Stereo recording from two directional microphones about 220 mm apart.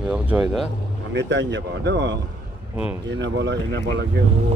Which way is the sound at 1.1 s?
55° right (ahead or behind).